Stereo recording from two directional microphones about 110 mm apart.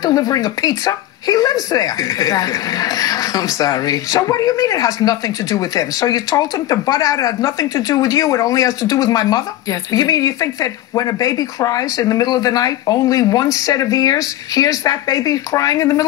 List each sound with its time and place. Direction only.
0.0 s speech: 35° left (ahead or behind)